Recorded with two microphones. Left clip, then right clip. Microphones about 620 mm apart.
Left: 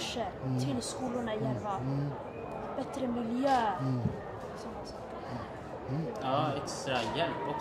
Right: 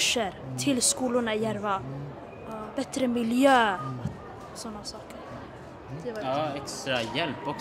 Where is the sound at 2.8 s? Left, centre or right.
Right.